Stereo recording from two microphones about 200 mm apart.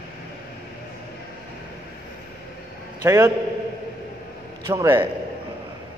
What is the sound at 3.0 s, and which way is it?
Speech, 15° right (ahead or behind).